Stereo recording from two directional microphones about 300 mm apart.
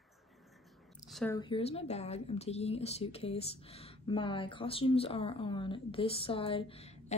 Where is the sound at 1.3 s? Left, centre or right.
Centre.